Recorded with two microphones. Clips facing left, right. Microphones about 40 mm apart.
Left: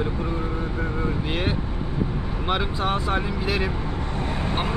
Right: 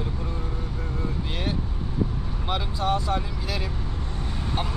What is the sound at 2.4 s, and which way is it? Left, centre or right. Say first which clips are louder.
Speech: left 2 dB; left.